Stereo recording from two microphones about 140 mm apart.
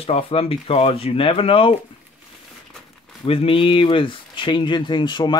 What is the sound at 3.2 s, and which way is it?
Speech, 40° left (ahead or behind).